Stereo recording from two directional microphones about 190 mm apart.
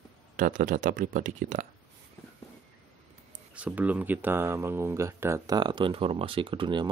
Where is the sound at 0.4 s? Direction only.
45° right (ahead or behind).